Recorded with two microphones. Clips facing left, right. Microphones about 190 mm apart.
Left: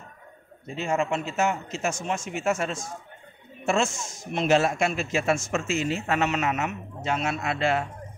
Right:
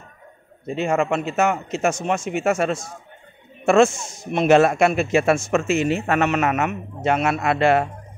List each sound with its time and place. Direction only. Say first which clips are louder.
0.7 s a man's voice: right 5 dB; 65° right (ahead or behind)